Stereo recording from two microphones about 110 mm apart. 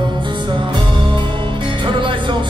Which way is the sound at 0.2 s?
45° right (ahead or behind).